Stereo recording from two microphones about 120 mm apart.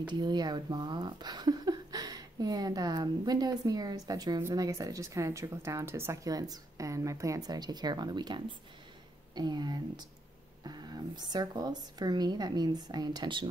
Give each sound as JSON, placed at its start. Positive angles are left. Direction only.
{"t": 0.0, "sound": "speech", "side_deg": -40}